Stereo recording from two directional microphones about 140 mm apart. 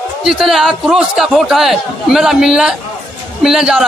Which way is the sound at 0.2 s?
Centre (ahead or behind).